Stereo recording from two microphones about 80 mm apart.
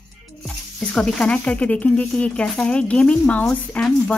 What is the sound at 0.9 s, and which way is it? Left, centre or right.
Speech, centre.